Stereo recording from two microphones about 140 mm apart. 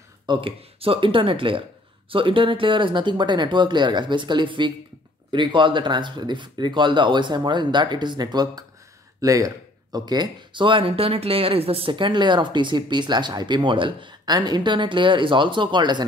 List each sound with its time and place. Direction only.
0.3 s speech: 40° right (ahead or behind)